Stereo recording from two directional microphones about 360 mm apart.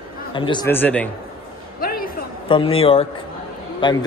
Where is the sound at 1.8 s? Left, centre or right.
Left.